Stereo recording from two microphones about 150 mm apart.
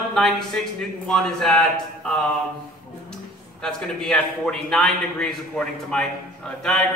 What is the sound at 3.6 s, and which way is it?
A man's voice, 5° left (ahead or behind).